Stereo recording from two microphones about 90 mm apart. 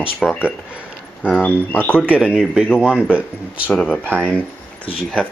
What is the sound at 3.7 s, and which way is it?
Speech, 10° left (ahead or behind).